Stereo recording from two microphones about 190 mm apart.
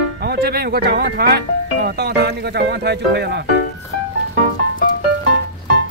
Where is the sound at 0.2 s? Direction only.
55° right (ahead or behind).